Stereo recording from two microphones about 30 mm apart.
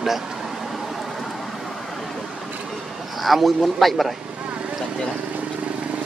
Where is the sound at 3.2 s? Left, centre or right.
Centre.